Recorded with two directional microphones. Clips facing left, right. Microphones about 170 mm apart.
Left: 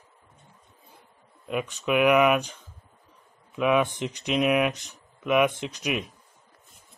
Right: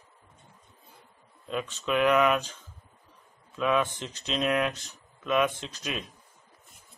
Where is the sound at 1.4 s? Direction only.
15° left (ahead or behind).